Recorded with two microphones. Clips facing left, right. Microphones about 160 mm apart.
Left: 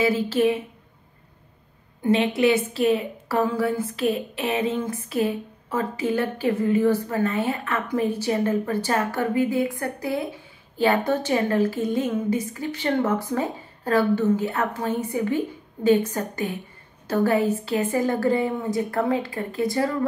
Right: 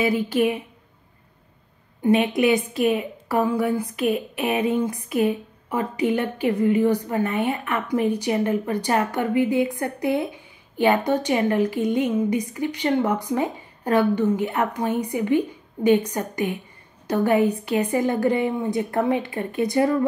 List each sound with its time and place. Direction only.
0.0 s a woman's voice: 15° right (ahead or behind)
2.0 s a woman's voice: 15° right (ahead or behind)